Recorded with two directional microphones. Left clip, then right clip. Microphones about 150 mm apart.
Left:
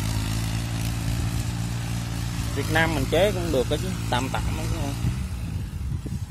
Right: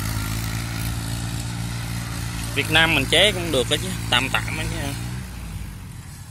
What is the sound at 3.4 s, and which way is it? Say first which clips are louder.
Speech: right 3 dB; 10° left (ahead or behind).